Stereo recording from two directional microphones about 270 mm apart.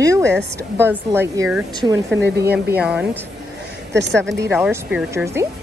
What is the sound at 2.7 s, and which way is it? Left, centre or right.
Speech, centre.